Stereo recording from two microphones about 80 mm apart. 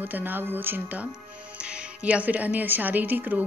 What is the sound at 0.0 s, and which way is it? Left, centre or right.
Speech, right.